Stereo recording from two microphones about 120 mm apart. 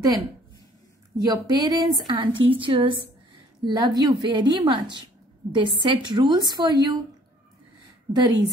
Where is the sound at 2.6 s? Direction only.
45° right (ahead or behind).